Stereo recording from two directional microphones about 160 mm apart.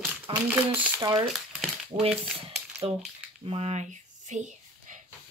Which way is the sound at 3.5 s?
40° right (ahead or behind).